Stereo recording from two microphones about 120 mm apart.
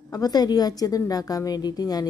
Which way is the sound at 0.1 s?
35° left (ahead or behind).